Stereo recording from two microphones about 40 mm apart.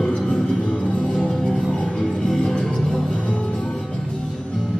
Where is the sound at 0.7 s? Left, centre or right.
Left.